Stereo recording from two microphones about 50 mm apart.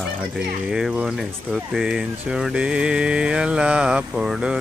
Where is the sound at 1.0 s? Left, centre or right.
Centre.